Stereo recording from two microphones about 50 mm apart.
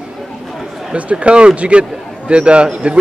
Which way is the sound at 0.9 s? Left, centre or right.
Right.